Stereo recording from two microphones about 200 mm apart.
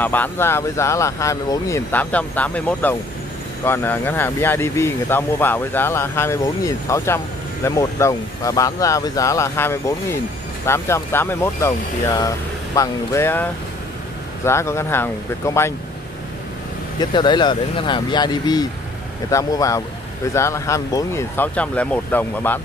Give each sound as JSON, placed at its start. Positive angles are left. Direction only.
{"t": 0.0, "sound": "speech", "side_deg": 10}
{"t": 17.0, "sound": "speech", "side_deg": 20}